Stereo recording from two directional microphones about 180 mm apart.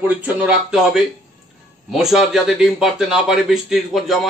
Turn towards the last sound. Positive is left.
turn(degrees=0)  # may be behind; listen again after turning